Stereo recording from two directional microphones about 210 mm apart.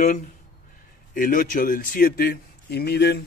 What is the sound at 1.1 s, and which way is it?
A man's voice, 40° left (ahead or behind).